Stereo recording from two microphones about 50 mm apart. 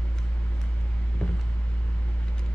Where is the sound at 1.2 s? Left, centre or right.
Centre.